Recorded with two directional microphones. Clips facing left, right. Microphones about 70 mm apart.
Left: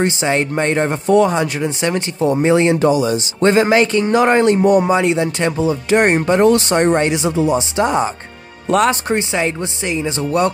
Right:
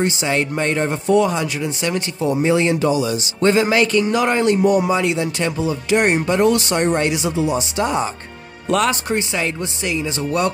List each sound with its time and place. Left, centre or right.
0.0 s speech: left